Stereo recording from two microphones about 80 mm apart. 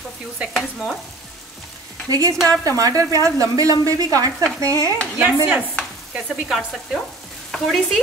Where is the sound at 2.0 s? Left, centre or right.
Right.